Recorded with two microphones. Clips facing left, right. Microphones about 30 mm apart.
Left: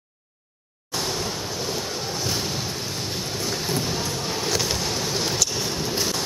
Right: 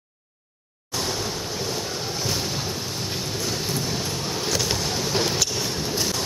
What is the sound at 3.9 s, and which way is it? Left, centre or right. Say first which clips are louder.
Music: left 1 dB; centre.